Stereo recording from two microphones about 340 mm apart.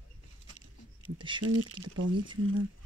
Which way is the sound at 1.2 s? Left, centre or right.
Centre.